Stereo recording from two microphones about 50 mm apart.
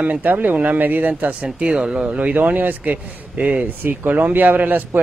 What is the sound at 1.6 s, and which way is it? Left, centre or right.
A man's voice, centre.